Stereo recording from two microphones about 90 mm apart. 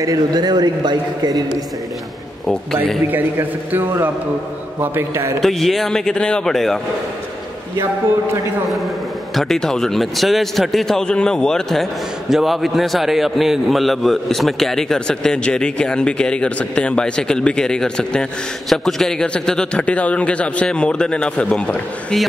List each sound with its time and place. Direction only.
0.0 s a man's voice: 45° right (ahead or behind)
2.4 s a man's voice: 5° left (ahead or behind)
3.1 s a man's voice: 20° right (ahead or behind)
5.4 s a man's voice: 5° left (ahead or behind)
9.3 s a man's voice: 5° left (ahead or behind)